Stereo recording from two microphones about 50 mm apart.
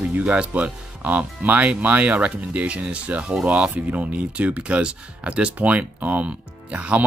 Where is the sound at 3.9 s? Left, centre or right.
Right.